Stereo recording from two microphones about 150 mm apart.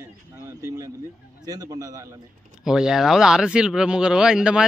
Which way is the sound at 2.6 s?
5° right (ahead or behind).